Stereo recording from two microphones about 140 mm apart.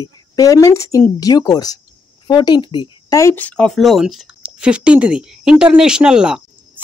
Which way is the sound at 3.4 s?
10° left (ahead or behind).